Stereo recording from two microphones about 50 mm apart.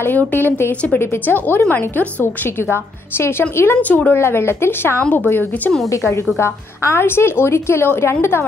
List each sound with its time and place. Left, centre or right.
0.9 s a woman's voice: left
2.7 s a woman's voice: left
3.9 s a woman's voice: left
4.3 s a woman's voice: left
6.4 s a woman's voice: left